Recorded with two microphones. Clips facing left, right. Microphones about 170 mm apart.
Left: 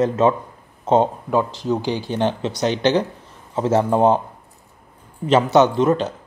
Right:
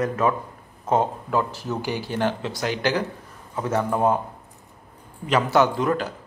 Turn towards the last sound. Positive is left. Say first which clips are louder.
# left 5 dB
turn(degrees=25)  # may be behind; listen again after turning